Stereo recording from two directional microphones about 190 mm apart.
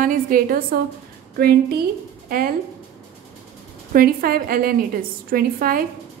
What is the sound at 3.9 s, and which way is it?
A woman's voice, 50° right (ahead or behind).